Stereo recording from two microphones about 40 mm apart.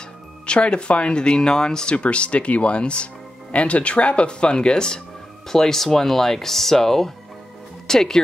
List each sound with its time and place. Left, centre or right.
0.5 s speech: left
2.0 s speech: left; by 8.2 s centre